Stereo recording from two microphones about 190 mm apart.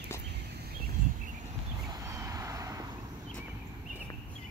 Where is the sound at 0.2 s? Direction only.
60° right (ahead or behind).